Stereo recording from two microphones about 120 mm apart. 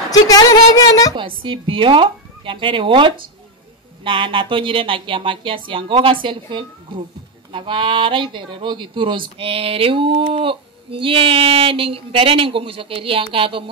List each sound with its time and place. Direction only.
0.3 s speech: 30° left (ahead or behind)
1.1 s speech: 45° right (ahead or behind)